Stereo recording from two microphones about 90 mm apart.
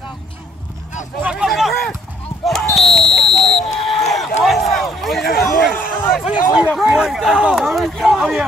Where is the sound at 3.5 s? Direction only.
5° left (ahead or behind).